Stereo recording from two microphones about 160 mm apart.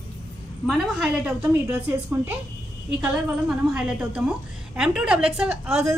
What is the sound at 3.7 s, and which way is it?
A woman's voice, 5° right (ahead or behind).